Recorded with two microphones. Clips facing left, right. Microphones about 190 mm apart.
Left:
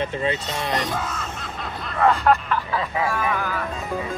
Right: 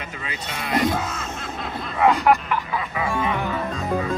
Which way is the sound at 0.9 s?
5° right (ahead or behind).